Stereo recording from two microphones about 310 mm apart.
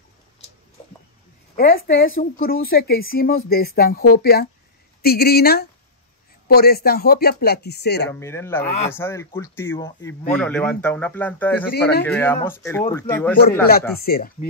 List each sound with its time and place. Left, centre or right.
1.6 s a woman's voice: left
8.1 s speech: centre
8.6 s a woman's voice: left
8.9 s speech: centre
13.7 s a woman's voice: left